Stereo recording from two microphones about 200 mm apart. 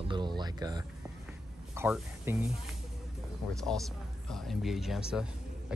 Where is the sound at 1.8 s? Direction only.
10° right (ahead or behind).